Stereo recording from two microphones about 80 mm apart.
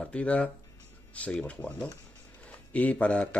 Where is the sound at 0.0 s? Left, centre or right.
Centre.